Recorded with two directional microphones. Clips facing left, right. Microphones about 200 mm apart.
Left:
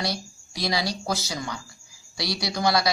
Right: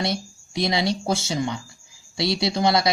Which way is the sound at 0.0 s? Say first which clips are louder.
Right 4 dB; 25° right (ahead or behind).